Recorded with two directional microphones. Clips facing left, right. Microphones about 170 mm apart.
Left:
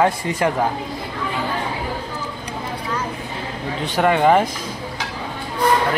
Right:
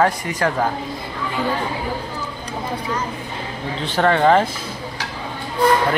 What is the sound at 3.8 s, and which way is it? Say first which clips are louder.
Speech: even; 10° left (ahead or behind).